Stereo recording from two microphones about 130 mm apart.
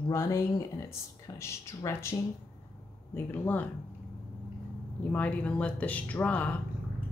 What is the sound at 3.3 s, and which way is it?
Speech, 15° left (ahead or behind).